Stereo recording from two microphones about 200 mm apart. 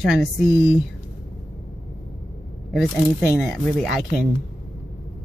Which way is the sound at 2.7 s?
Centre (ahead or behind).